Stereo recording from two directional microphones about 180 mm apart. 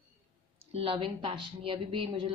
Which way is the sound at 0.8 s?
30° right (ahead or behind).